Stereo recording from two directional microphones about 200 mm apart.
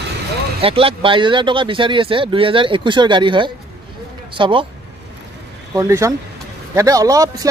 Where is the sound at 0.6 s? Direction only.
25° right (ahead or behind).